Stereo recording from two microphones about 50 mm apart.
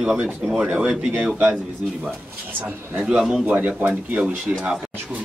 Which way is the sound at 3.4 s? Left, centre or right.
Right.